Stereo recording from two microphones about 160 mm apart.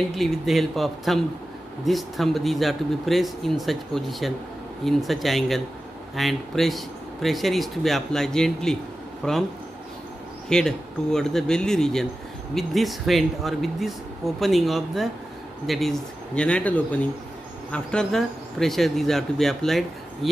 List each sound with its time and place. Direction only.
0.1 s speech: centre (ahead or behind)
10.5 s speech: 5° left (ahead or behind)